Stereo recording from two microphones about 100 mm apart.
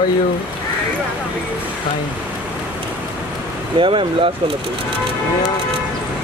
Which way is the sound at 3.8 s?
60° right (ahead or behind).